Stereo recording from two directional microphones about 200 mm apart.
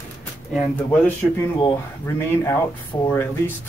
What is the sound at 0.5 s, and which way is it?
Speech, 10° left (ahead or behind).